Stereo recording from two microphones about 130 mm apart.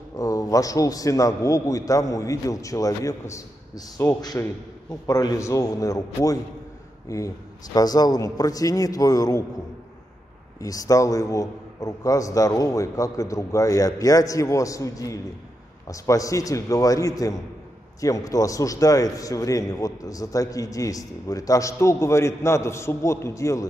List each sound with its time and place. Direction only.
0.2 s a man's voice: 25° left (ahead or behind)
10.6 s a man's voice: 25° left (ahead or behind)